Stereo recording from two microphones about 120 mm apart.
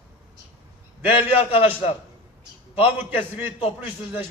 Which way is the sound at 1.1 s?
50° left (ahead or behind).